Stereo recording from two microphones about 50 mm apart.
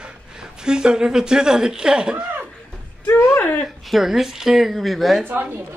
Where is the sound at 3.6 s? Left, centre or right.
Centre.